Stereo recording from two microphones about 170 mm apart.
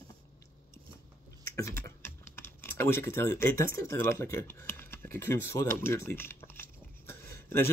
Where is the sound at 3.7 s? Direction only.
15° left (ahead or behind).